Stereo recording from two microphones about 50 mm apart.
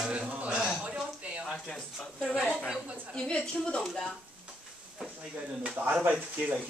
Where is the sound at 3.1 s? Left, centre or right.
Centre.